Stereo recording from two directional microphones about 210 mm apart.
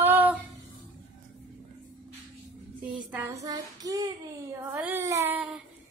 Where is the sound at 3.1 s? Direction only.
15° right (ahead or behind).